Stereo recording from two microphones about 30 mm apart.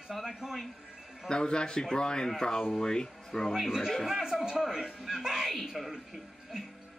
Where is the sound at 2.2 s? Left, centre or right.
Centre.